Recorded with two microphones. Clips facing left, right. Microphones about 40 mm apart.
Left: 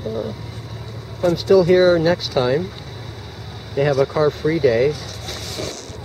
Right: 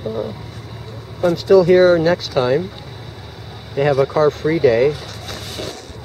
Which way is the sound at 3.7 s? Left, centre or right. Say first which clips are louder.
Right 2 dB; centre.